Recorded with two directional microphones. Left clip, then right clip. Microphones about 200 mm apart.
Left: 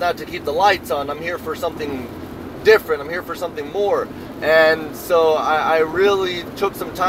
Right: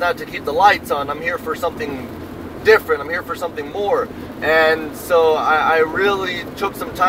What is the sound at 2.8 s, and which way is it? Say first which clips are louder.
Speech: right 2 dB; 40° left (ahead or behind).